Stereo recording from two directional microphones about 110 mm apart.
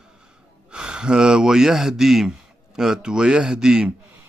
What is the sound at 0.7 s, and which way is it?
Speech, 5° right (ahead or behind).